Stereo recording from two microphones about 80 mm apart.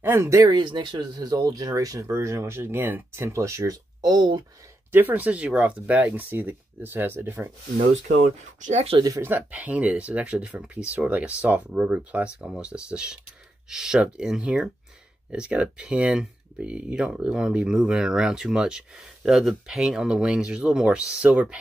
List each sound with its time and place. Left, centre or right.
0.0 s speech: right
0.4 s speech: right
4.0 s speech: right
4.9 s speech: right
9.2 s speech: right